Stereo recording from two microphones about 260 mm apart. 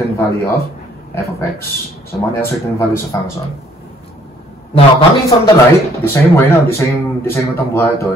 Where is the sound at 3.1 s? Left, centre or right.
Centre.